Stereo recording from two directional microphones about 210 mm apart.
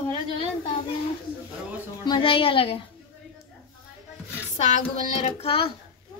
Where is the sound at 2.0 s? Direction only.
25° left (ahead or behind).